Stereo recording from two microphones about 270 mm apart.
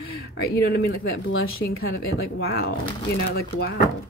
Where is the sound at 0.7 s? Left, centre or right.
Left.